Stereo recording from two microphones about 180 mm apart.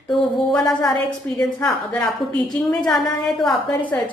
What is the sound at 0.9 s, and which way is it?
Speech, 5° left (ahead or behind).